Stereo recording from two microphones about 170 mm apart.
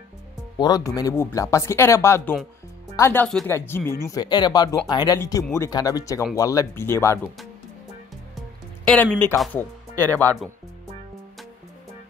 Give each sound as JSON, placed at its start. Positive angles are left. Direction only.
{"t": 0.6, "sound": "speech", "side_deg": 20}
{"t": 4.1, "sound": "speech", "side_deg": 25}
{"t": 8.8, "sound": "speech", "side_deg": 5}